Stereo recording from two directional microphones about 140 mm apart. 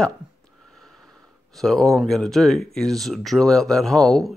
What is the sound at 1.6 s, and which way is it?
Speech, centre (ahead or behind).